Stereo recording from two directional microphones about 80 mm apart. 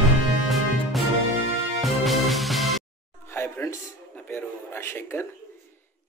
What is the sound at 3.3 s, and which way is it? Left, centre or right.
Music, left.